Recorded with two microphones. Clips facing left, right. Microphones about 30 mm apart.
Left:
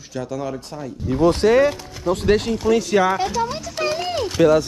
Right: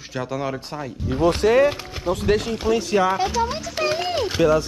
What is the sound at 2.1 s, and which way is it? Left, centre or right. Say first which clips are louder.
Speech: left 3 dB; left.